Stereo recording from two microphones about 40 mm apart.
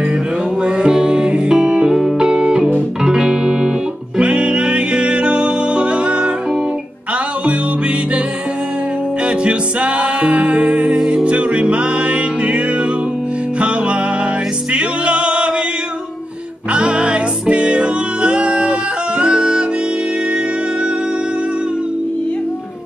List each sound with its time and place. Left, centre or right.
0.7 s music: right
4.2 s music: right
9.2 s music: right
14.7 s music: right
16.7 s music: right